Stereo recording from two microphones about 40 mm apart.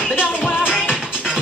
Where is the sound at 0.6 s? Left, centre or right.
Right.